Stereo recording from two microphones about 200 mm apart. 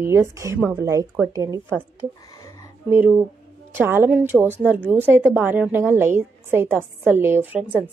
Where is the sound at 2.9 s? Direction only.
10° right (ahead or behind).